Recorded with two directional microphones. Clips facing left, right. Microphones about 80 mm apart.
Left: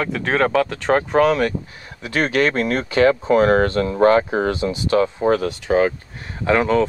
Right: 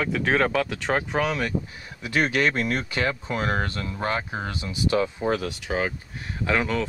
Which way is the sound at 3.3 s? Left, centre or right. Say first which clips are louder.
Left 12 dB; left.